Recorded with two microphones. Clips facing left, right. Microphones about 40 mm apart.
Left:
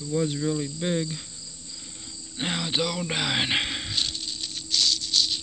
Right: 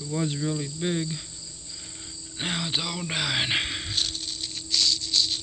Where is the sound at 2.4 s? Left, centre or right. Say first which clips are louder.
Left 2 dB; centre.